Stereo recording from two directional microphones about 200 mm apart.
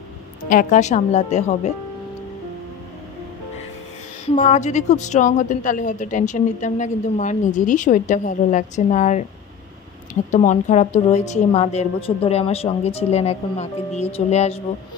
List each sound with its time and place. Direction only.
0.5 s a woman's voice: 40° left (ahead or behind)
4.3 s a woman's voice: 35° left (ahead or behind)
10.3 s a woman's voice: 35° left (ahead or behind)